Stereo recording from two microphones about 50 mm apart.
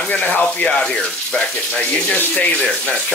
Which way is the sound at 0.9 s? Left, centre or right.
Centre.